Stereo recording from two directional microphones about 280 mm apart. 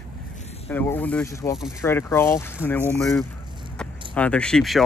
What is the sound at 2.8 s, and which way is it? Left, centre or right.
Speech, centre.